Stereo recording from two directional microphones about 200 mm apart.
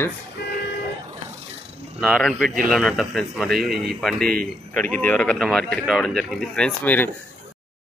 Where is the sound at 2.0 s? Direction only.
Centre (ahead or behind).